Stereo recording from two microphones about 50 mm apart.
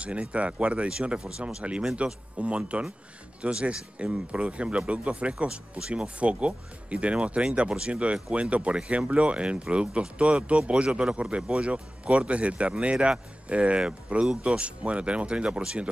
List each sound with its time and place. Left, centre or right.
0.0 s speech: right